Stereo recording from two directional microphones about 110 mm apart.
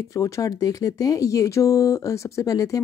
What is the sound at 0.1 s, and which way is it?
Speech, 30° left (ahead or behind).